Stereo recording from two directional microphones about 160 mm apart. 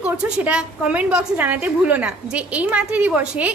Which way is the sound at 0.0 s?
10° right (ahead or behind).